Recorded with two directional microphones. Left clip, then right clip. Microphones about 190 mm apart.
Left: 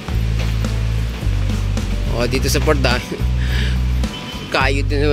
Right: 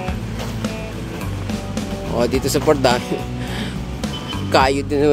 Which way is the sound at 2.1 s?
15° right (ahead or behind).